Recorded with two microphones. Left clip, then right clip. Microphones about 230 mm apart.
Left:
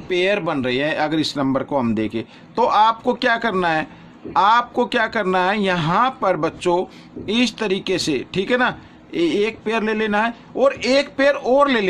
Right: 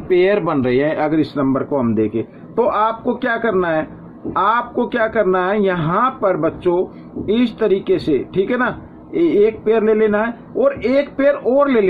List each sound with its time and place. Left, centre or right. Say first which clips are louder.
0.1 s speech: right 4 dB; left